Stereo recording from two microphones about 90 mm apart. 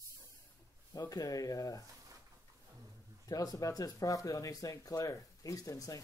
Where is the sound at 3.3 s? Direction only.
40° left (ahead or behind).